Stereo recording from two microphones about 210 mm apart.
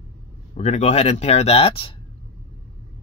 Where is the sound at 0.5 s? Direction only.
35° left (ahead or behind).